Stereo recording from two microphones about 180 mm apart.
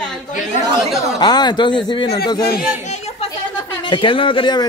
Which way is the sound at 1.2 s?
25° left (ahead or behind).